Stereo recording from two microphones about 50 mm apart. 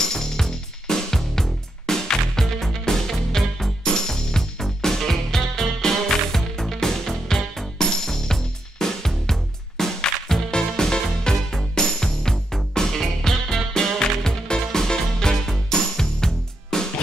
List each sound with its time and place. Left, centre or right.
0.0 s music: centre